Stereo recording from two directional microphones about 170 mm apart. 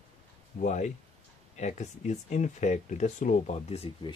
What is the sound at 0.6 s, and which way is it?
Speech, 45° left (ahead or behind).